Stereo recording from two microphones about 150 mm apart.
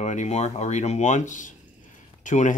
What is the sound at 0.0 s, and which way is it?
Speech, 50° left (ahead or behind).